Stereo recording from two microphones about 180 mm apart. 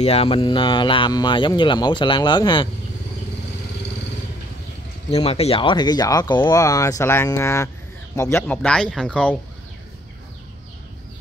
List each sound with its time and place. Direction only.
0.0 s speech: 35° left (ahead or behind)
5.1 s speech: 35° left (ahead or behind); by 9.4 s 5° left (ahead or behind)